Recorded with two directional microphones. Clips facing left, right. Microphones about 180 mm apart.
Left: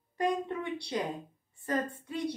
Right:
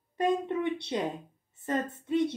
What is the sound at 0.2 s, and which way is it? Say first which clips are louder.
Speech: right 4 dB; 25° right (ahead or behind).